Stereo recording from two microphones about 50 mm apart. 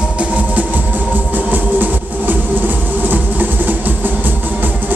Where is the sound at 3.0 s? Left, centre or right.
Right.